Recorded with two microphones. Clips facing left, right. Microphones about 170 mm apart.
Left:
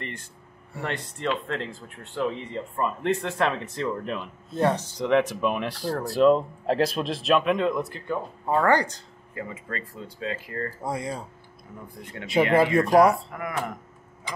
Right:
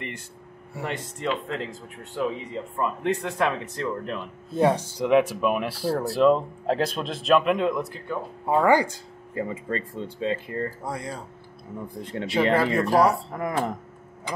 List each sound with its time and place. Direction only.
0.7 s a man's voice: 10° right (ahead or behind)
4.6 s speech: 10° right (ahead or behind)
8.5 s a man's voice: 10° right (ahead or behind)
9.3 s speech: 30° right (ahead or behind)
10.9 s speech: 10° left (ahead or behind)
12.0 s speech: 30° right (ahead or behind)